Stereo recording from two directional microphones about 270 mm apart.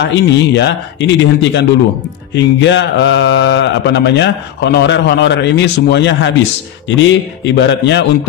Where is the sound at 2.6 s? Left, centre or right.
Left.